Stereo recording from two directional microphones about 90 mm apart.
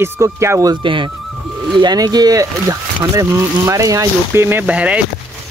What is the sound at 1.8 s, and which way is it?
Speech, 50° right (ahead or behind).